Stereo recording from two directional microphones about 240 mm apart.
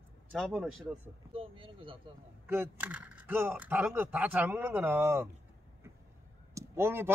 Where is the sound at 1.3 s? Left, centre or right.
Right.